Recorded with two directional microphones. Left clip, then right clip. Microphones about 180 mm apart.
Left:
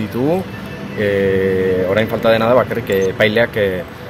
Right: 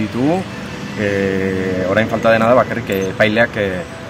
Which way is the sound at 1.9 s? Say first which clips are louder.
Right 4 dB; 15° left (ahead or behind).